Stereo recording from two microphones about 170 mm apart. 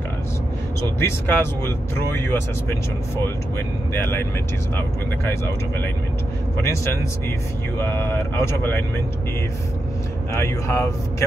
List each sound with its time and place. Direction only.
0.9 s speech: 15° left (ahead or behind)
3.9 s speech: 15° left (ahead or behind)
7.8 s speech: 15° left (ahead or behind)
10.3 s speech: 15° left (ahead or behind)